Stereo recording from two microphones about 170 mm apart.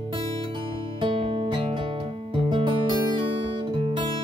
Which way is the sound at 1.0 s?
30° right (ahead or behind).